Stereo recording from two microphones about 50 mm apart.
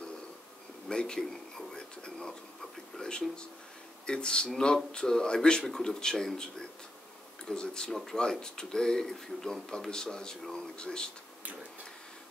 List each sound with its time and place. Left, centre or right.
0.8 s speech: centre
1.2 s a sound: centre
3.0 s speech: centre